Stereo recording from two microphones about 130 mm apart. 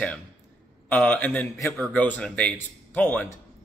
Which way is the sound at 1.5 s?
Centre (ahead or behind).